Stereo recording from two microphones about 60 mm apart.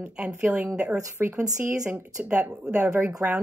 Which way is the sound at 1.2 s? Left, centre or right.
Right.